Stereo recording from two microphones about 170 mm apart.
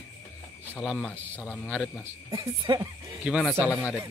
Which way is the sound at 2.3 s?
20° right (ahead or behind).